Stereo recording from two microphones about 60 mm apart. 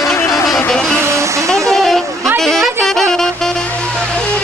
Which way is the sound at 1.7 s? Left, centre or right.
Centre.